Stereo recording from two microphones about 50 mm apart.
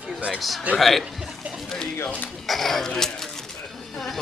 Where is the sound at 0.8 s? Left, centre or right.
Centre.